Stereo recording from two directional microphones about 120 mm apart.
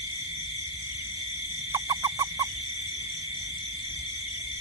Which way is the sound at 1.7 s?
30° right (ahead or behind).